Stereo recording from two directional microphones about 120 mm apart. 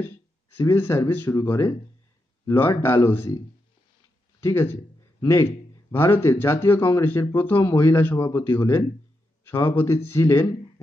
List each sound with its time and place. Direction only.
0.6 s speech: 20° left (ahead or behind)
2.7 s speech: 20° left (ahead or behind)
4.4 s a man's voice: 20° left (ahead or behind)